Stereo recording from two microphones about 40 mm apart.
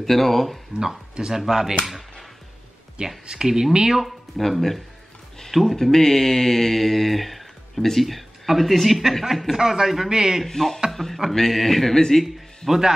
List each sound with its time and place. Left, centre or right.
0.0 s speech: centre
1.1 s speech: centre
3.3 s speech: centre
4.4 s speech: centre
10.4 s speech: centre
12.6 s speech: centre